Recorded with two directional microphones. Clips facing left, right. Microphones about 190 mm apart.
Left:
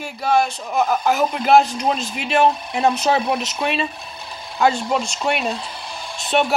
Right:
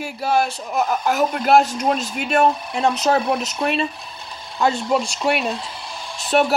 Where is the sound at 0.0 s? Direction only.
5° right (ahead or behind).